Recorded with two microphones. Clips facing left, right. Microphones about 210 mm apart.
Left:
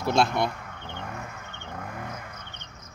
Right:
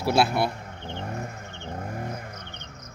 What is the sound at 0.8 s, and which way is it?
Vehicle, 35° right (ahead or behind).